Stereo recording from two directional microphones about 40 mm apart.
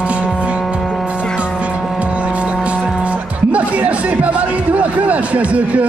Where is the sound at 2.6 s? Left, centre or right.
Right.